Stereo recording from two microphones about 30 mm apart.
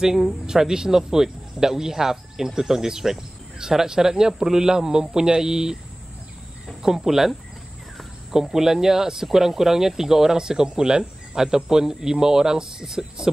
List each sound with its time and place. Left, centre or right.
0.0 s speech: centre
7.0 s speech: centre
8.5 s speech: centre